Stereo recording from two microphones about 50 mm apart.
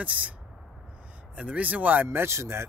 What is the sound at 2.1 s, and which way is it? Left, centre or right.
Speech, right.